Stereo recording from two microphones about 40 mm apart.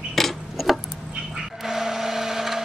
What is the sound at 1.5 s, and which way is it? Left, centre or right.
Printer, centre.